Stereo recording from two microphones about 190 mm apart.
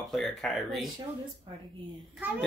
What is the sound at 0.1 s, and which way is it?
Speech, centre (ahead or behind).